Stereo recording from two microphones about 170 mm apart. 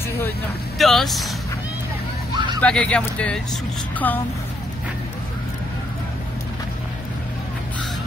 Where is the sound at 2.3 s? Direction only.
25° right (ahead or behind).